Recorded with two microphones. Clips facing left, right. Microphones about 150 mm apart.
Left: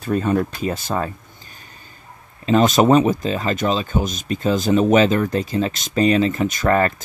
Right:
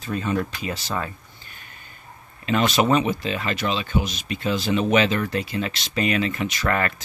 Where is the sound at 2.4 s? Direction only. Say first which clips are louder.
Left 6 dB; 40° left (ahead or behind).